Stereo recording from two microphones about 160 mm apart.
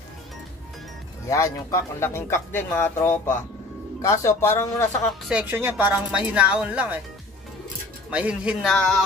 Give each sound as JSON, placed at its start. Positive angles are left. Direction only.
{"t": 1.3, "sound": "speech", "side_deg": 20}
{"t": 5.3, "sound": "speech", "side_deg": -10}
{"t": 8.1, "sound": "speech", "side_deg": -10}
{"t": 8.7, "sound": "speech", "side_deg": 5}